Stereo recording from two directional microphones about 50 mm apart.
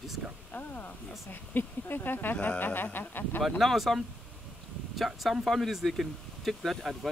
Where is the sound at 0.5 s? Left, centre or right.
Left.